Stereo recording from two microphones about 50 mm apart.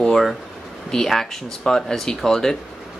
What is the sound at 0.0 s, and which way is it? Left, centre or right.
Speech, centre.